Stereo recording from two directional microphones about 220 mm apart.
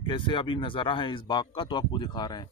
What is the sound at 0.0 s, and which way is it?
Speech, 20° left (ahead or behind).